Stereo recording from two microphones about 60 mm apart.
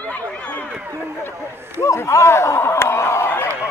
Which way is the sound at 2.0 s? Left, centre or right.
Left.